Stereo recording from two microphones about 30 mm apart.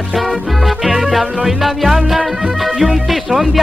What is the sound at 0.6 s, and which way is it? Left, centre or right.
Music, centre.